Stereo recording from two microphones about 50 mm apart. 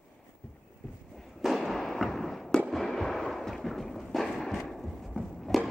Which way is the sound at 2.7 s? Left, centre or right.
Centre.